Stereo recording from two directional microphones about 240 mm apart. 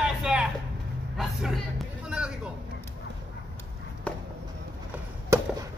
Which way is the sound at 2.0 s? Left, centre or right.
Centre.